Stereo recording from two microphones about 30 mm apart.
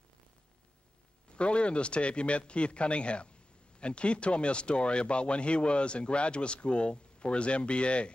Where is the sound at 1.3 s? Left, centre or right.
Left.